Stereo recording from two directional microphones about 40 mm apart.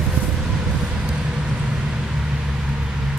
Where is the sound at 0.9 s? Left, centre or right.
Centre.